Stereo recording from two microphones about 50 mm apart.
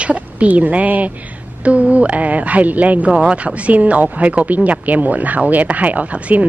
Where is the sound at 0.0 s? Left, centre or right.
Right.